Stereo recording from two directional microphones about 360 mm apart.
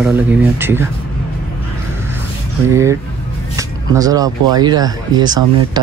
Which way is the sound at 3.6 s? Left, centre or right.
Centre.